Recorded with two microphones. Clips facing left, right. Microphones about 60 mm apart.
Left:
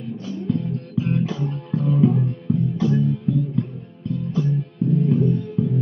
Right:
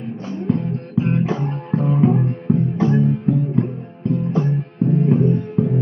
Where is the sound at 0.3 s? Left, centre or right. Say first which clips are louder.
Right 3 dB; right.